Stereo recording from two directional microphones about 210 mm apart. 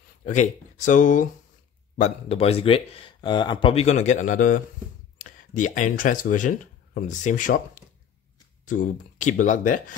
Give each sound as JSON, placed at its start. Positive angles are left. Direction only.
{"t": 0.2, "sound": "speech", "side_deg": 35}